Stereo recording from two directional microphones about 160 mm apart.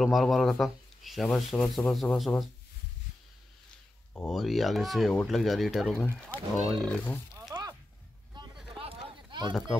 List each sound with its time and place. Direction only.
0.0 s speech: centre (ahead or behind)
4.3 s speech: centre (ahead or behind)
7.3 s a sound: 25° right (ahead or behind)
8.7 s run: 35° right (ahead or behind)
9.5 s speech: centre (ahead or behind)